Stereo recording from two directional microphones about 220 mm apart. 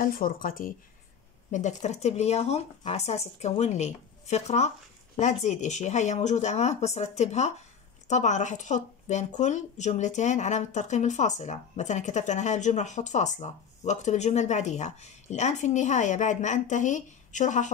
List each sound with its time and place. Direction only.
0.0 s a woman's voice: 40° left (ahead or behind)